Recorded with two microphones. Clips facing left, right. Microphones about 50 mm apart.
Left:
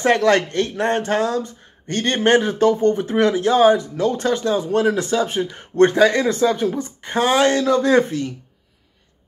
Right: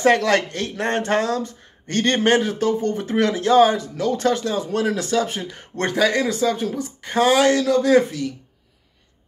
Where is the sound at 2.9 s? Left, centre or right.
Left.